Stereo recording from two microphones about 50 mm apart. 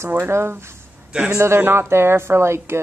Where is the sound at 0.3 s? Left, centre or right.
Right.